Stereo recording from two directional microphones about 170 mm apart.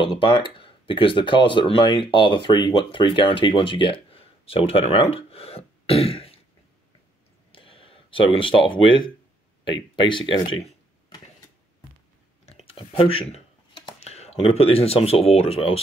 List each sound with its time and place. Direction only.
0.0 s speech: 30° left (ahead or behind)
7.5 s speech: 30° left (ahead or behind)
12.4 s clicking: 35° left (ahead or behind)